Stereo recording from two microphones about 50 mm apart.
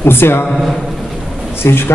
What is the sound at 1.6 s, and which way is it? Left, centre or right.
Speech, left.